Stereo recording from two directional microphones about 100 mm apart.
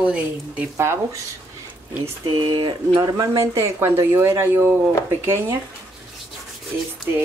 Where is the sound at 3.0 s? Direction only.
35° right (ahead or behind).